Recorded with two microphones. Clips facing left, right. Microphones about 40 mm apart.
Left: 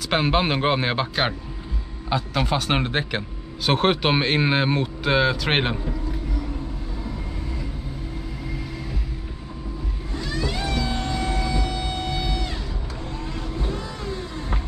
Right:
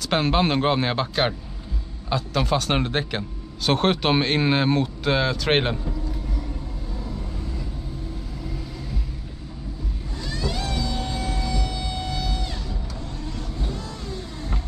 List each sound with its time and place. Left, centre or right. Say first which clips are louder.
0.1 s speech: even; centre
10.1 s vehicle: left 2 dB; centre
13.3 s music: left 3 dB; centre